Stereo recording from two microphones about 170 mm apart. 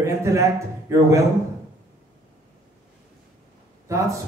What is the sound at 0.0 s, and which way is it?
A man's voice, 15° right (ahead or behind).